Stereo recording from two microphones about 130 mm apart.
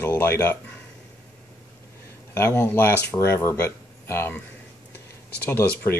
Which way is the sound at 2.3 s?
15° left (ahead or behind).